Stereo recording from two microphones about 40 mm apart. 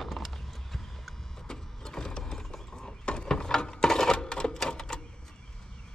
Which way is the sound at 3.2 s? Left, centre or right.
Centre.